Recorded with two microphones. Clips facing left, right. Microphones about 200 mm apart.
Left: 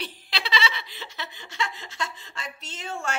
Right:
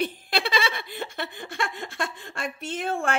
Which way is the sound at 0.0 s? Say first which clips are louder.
Right 8 dB; 50° right (ahead or behind).